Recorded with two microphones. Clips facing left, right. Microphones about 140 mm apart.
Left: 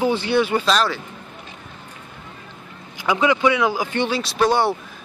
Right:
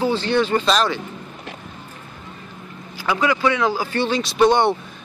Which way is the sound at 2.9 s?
20° left (ahead or behind).